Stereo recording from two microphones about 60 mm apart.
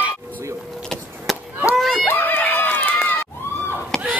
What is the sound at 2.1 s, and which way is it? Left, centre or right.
Run, left.